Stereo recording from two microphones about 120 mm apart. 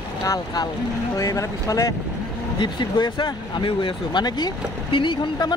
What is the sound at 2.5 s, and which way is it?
Speech, 40° left (ahead or behind).